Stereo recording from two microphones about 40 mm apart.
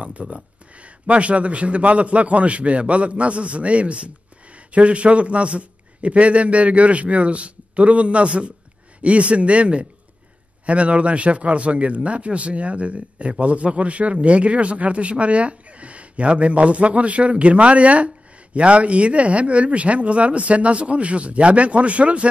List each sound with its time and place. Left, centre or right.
0.0 s a man's voice: right